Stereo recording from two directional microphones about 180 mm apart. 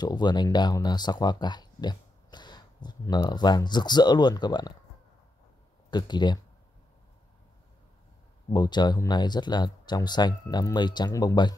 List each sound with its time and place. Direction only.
0.0 s speech: 25° left (ahead or behind)
5.9 s speech: 25° left (ahead or behind)
8.5 s speech: 25° left (ahead or behind)